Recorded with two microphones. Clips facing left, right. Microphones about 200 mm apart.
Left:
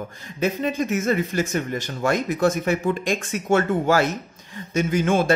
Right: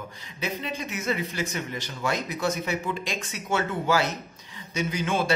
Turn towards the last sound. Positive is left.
turn(degrees=50)  # may be behind; listen again after turning